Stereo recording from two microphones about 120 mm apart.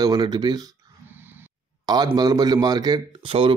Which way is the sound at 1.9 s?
35° right (ahead or behind).